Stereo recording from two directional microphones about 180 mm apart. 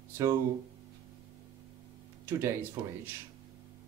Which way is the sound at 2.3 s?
15° right (ahead or behind).